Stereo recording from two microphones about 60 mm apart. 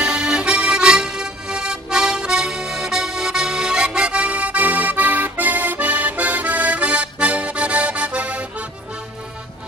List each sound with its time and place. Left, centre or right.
0.0 s accordion: centre